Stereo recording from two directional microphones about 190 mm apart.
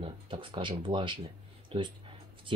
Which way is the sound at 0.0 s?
25° right (ahead or behind).